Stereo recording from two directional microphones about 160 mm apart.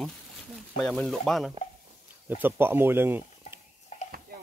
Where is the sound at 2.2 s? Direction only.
10° right (ahead or behind).